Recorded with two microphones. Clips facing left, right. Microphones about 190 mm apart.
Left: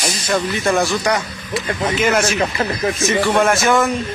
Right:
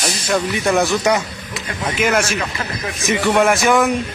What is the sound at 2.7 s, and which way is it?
Speech, 35° left (ahead or behind).